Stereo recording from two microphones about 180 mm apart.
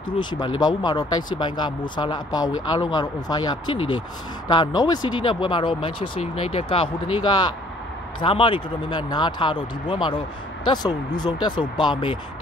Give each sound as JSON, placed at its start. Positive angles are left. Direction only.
{"t": 0.2, "sound": "speech", "side_deg": 25}